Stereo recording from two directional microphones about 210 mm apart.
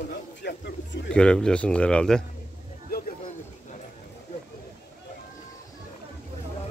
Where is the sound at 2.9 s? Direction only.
45° left (ahead or behind).